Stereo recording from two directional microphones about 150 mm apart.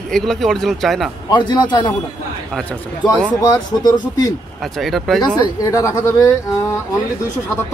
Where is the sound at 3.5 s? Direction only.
25° left (ahead or behind).